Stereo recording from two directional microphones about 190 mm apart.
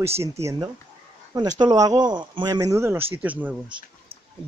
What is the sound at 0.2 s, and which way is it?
Speech, 15° right (ahead or behind).